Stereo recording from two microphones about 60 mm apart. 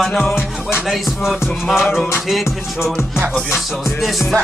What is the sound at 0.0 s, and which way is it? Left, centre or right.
Music, centre.